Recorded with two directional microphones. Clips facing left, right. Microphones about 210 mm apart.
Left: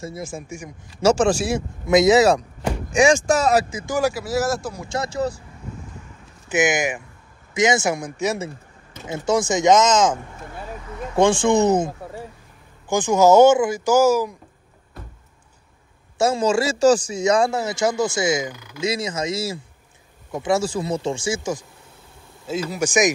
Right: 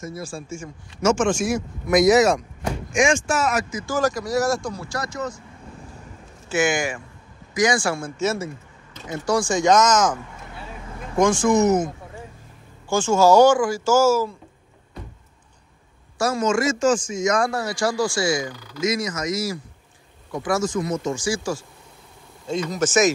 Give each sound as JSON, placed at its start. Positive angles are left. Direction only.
{"t": 0.0, "sound": "a man's voice", "side_deg": 25}
{"t": 1.0, "sound": "speech", "side_deg": 35}
{"t": 3.8, "sound": "speech", "side_deg": 10}
{"t": 4.8, "sound": "a man's voice", "side_deg": 25}
{"t": 6.5, "sound": "a man's voice", "side_deg": 20}
{"t": 12.9, "sound": "speech", "side_deg": 15}
{"t": 16.2, "sound": "a man's voice", "side_deg": 30}
{"t": 22.5, "sound": "speech", "side_deg": 5}